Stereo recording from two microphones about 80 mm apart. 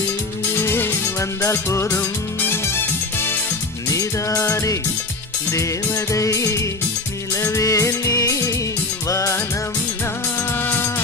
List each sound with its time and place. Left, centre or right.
0.6 s music: left
3.9 s music: left
10.6 s music: left